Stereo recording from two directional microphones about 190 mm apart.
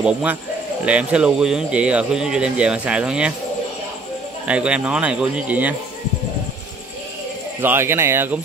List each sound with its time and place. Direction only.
0.0 s a man's voice: 5° right (ahead or behind)
4.5 s a man's voice: 5° right (ahead or behind)
7.6 s a man's voice: 10° right (ahead or behind)